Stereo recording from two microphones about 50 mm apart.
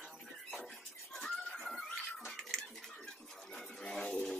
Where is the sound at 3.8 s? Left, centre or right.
Centre.